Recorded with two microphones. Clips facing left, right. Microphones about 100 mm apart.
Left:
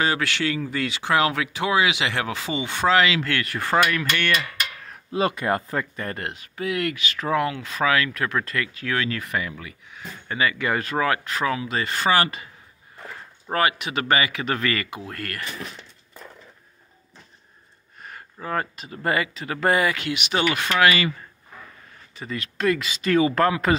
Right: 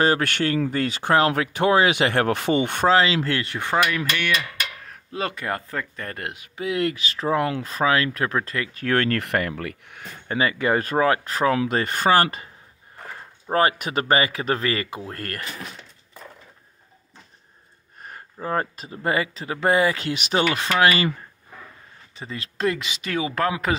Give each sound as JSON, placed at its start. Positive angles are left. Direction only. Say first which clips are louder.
{"t": 0.0, "sound": "speech", "louder": "right 3 dB", "side_deg": -45}
{"t": 2.9, "sound": "speech", "louder": "even", "side_deg": -30}
{"t": 3.9, "sound": "speech", "louder": "left 1 dB", "side_deg": -10}
{"t": 5.1, "sound": "speech", "louder": "left 5 dB", "side_deg": 15}
{"t": 6.0, "sound": "speech", "louder": "left 2 dB", "side_deg": 0}
{"t": 6.3, "sound": "speech", "louder": "right 4 dB", "side_deg": -15}
{"t": 8.7, "sound": "speech", "louder": "right 8 dB", "side_deg": -50}
{"t": 10.2, "sound": "speech", "louder": "right 2 dB", "side_deg": -35}
{"t": 11.5, "sound": "speech", "louder": "right 4 dB", "side_deg": -55}
{"t": 13.5, "sound": "speech", "louder": "right 2 dB", "side_deg": -35}
{"t": 15.0, "sound": "speech", "louder": "right 1 dB", "side_deg": -40}
{"t": 18.0, "sound": "speech", "louder": "right 3 dB", "side_deg": -35}
{"t": 22.1, "sound": "speech", "louder": "left 2 dB", "side_deg": -25}
{"t": 23.0, "sound": "speech", "louder": "left 5 dB", "side_deg": -5}